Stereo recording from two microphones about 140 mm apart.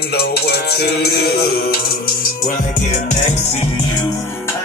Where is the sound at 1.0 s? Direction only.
90° left.